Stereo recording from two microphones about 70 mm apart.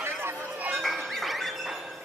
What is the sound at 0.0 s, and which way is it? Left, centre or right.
Music, right.